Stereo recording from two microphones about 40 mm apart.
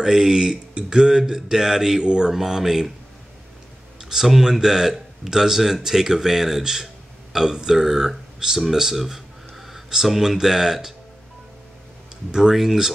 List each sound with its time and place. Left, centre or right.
0.0 s speech: centre
2.0 s mantra: centre
2.3 s speech: centre
4.0 s speech: centre
12.3 s speech: centre